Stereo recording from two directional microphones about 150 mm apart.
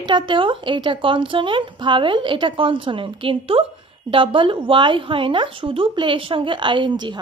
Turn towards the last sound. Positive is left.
turn(degrees=-30)  # may be behind; listen again after turning